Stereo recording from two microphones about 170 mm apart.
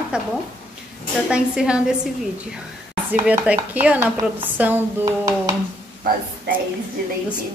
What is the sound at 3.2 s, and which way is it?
Speech, 10° right (ahead or behind).